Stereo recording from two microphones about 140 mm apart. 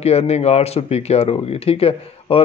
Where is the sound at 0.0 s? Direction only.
50° left (ahead or behind).